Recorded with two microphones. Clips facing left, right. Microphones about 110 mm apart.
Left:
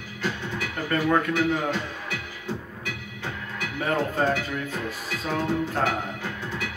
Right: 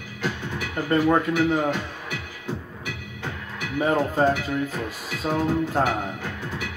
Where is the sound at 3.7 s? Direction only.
15° right (ahead or behind).